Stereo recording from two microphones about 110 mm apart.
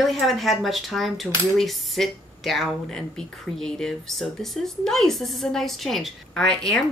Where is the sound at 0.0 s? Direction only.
Centre (ahead or behind).